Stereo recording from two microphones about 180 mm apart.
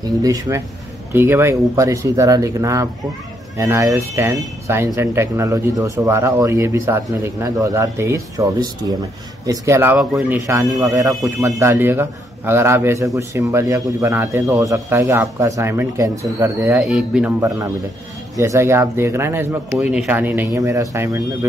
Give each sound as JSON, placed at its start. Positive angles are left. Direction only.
{"t": 0.2, "sound": "speech", "side_deg": -20}
{"t": 9.5, "sound": "speech", "side_deg": -15}
{"t": 16.8, "sound": "speech", "side_deg": -5}
{"t": 18.3, "sound": "speech", "side_deg": -15}